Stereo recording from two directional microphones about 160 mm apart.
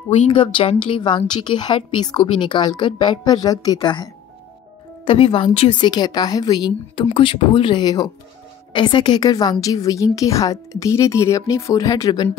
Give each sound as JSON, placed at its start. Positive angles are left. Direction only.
{"t": 0.3, "sound": "a woman's voice", "side_deg": 30}